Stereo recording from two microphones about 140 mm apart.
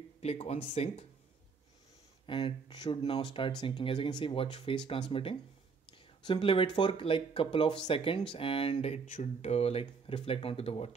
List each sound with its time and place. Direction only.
0.2 s speech: 45° left (ahead or behind)
2.2 s speech: 35° left (ahead or behind)
9.1 s speech: 55° left (ahead or behind)